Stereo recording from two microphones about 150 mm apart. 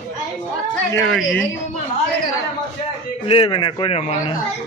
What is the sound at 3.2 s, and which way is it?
Speech, 40° left (ahead or behind).